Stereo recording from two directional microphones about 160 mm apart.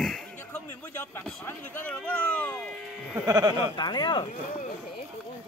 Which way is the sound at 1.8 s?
5° left (ahead or behind).